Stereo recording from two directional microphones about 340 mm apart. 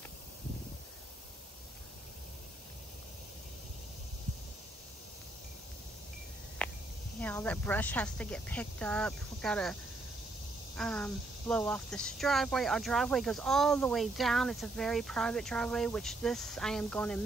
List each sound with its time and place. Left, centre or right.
6.6 s a sound: centre
7.2 s speech: centre
10.8 s speech: centre